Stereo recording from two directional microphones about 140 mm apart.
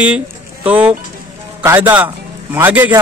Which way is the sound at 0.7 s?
10° right (ahead or behind).